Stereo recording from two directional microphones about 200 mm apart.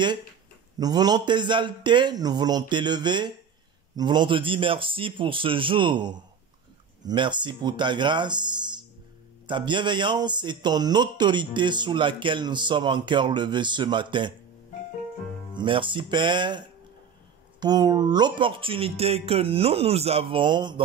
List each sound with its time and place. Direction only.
0.7 s speech: 20° right (ahead or behind)
15.5 s speech: 25° right (ahead or behind)